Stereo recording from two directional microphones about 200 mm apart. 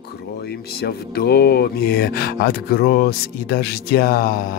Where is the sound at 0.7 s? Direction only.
55° left (ahead or behind).